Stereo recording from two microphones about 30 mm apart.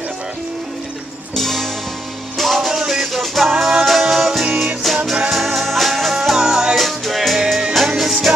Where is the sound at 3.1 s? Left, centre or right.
Centre.